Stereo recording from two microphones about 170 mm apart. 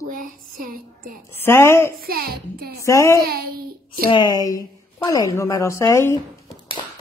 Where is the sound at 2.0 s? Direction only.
65° right (ahead or behind).